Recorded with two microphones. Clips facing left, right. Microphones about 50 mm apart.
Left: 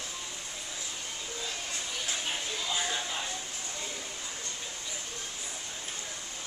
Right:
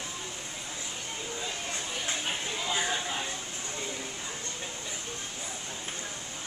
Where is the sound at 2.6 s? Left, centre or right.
Centre.